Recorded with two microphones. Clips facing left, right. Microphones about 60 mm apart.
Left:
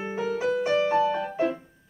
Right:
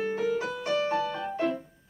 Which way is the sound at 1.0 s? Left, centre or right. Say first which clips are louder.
Left 7 dB; left.